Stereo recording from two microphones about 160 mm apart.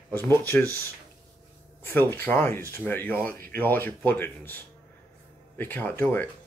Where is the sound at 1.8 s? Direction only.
10° left (ahead or behind).